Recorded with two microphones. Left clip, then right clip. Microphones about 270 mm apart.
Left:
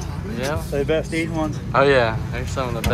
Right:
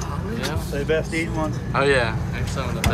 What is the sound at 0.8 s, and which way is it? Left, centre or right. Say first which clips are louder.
Speech: left 1 dB; left.